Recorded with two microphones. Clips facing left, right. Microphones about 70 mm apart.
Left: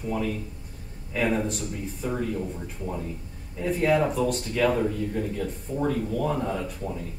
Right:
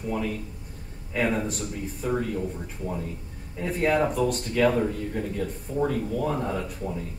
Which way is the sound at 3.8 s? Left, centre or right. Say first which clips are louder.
Even; right.